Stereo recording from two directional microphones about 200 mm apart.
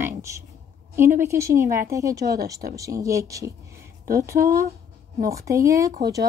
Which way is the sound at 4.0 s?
45° right (ahead or behind).